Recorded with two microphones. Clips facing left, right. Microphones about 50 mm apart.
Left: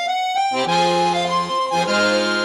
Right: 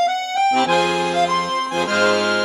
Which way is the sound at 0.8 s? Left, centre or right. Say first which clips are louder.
Left 1 dB; right.